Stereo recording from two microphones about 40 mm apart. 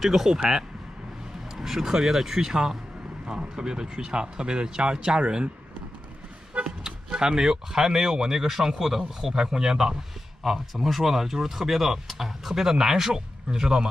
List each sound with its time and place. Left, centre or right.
0.0 s speech: centre
1.5 s speech: centre; by 5.5 s right
6.8 s speech: centre
10.7 s speech: centre